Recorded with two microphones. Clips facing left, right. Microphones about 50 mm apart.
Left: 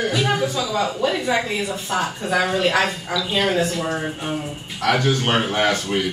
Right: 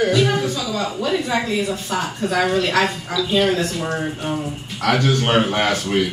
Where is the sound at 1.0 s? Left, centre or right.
Centre.